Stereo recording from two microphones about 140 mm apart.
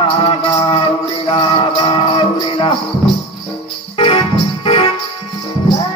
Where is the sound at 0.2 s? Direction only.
40° left (ahead or behind).